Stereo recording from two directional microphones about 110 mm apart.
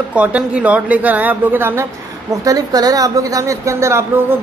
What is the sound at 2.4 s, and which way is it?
Speech, 35° right (ahead or behind).